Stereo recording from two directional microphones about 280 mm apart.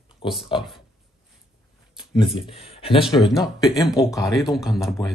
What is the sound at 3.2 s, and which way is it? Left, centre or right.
Speech, centre.